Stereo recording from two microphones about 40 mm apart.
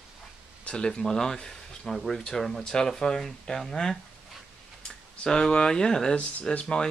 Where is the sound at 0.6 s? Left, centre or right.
Left.